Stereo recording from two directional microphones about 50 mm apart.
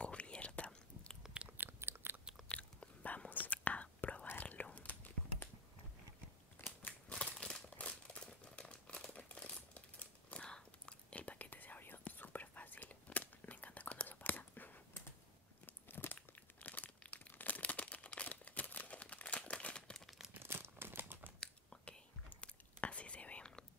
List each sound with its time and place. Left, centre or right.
0.0 s whispering: left
1.6 s biting: right
2.4 s whispering: left
6.6 s scissors: left
7.1 s crumpling: left
7.7 s a sound: left
8.5 s crumpling: left
11.1 s whispering: left
15.6 s crunch: left
16.2 s crumpling: left
20.3 s crumpling: right
21.0 s a sound: right
21.4 s whispering: centre